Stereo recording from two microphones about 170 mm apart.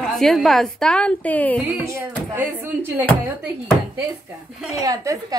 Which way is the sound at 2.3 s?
15° right (ahead or behind).